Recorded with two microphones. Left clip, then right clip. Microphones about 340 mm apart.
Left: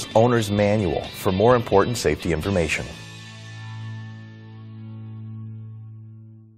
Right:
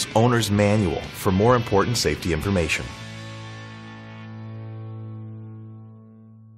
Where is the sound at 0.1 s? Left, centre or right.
Left.